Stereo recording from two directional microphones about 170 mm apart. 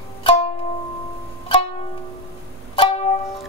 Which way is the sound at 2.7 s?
35° left (ahead or behind).